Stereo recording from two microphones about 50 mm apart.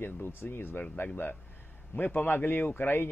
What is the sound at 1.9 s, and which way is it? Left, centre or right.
Speech, left.